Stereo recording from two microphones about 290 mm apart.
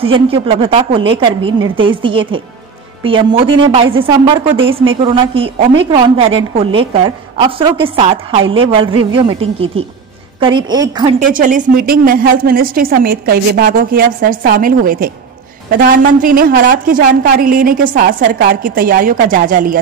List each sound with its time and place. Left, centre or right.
0.3 s a woman's voice: centre
11.1 s a woman's voice: right